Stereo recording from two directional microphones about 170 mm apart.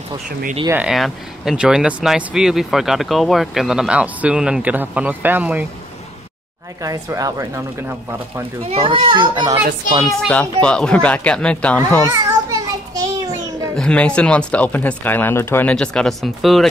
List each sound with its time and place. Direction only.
0.7 s speech: 5° right (ahead or behind)
6.8 s a child's voice: 20° right (ahead or behind)
8.6 s a child's voice: 30° right (ahead or behind)
10.0 s speech: 5° left (ahead or behind)
12.0 s a sound: 20° right (ahead or behind)
13.7 s speech: 5° left (ahead or behind)